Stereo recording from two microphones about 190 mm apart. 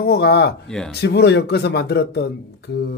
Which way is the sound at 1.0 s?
60° left (ahead or behind).